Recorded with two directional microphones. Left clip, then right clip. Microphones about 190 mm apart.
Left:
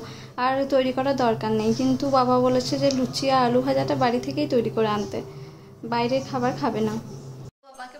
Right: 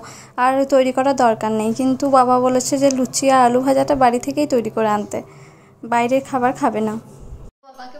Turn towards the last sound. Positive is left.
turn(degrees=-40)  # may be behind; listen again after turning